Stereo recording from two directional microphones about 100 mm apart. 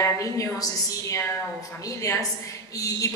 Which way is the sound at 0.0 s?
35° left (ahead or behind).